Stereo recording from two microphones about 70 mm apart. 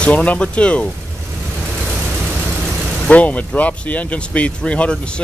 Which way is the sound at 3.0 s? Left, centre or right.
Centre.